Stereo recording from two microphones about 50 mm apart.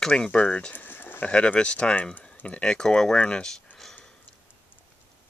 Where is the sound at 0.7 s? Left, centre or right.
Left.